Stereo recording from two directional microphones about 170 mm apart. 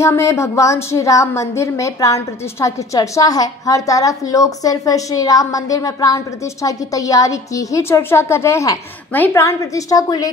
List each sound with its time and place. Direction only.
0.0 s a woman's voice: 15° left (ahead or behind)